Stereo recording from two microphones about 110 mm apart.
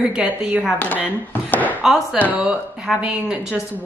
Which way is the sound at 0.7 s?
10° left (ahead or behind).